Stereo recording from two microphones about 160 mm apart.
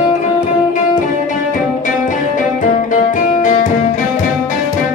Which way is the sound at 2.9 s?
55° left (ahead or behind).